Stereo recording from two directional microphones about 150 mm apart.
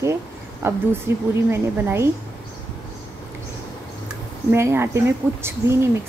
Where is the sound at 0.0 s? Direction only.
20° right (ahead or behind).